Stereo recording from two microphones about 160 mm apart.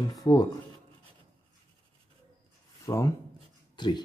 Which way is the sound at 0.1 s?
25° left (ahead or behind).